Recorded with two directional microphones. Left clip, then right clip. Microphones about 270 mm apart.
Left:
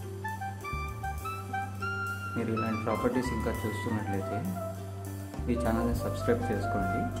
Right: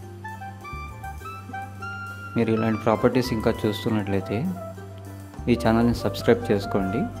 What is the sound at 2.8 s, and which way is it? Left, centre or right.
Speech, right.